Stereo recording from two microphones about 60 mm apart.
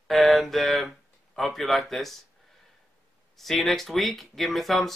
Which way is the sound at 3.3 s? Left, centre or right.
Centre.